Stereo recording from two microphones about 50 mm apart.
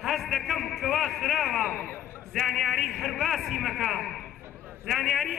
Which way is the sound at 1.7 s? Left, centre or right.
Left.